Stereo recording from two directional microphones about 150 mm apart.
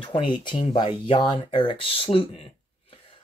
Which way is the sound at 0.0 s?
35° left (ahead or behind).